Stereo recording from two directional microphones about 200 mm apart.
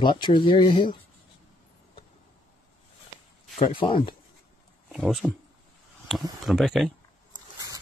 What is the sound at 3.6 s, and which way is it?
Speech, 25° left (ahead or behind).